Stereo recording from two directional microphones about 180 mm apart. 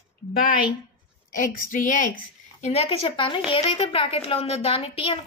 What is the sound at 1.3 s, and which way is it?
A woman's voice, 50° left (ahead or behind).